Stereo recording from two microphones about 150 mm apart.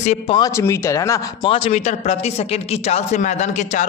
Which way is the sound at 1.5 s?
45° left (ahead or behind).